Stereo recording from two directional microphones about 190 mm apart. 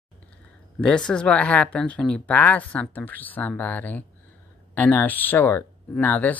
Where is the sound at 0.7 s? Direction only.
5° left (ahead or behind).